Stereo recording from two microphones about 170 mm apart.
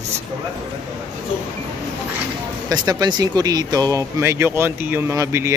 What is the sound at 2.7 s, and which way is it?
Speech, 25° right (ahead or behind).